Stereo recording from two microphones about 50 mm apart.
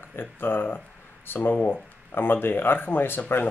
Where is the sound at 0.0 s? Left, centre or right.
Left.